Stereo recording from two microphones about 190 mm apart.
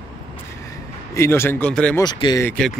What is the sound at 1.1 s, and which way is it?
Speech, 15° left (ahead or behind).